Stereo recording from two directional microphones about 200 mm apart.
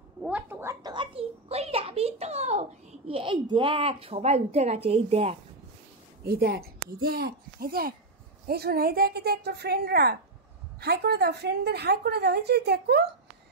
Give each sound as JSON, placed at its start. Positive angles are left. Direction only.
{"t": 0.2, "sound": "a sound", "side_deg": -10}
{"t": 3.1, "sound": "a woman's voice", "side_deg": -25}
{"t": 6.2, "sound": "a woman's voice", "side_deg": -50}